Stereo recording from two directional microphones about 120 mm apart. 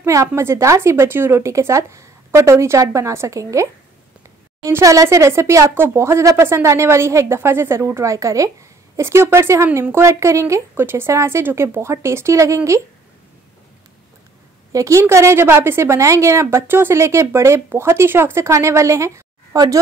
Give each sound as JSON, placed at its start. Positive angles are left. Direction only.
{"t": 0.0, "sound": "a woman's voice", "side_deg": -25}
{"t": 4.6, "sound": "a woman's voice", "side_deg": -25}
{"t": 14.7, "sound": "a woman's voice", "side_deg": -25}